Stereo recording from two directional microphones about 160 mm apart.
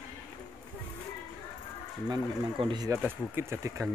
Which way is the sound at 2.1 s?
30° right (ahead or behind).